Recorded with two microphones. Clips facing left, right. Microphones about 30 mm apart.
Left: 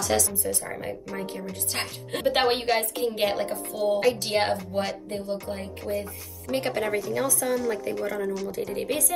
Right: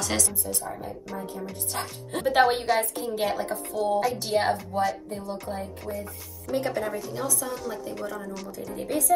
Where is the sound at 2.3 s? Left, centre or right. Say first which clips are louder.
Right 3 dB; left.